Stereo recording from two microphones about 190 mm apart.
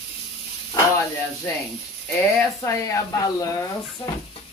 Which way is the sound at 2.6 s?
15° left (ahead or behind).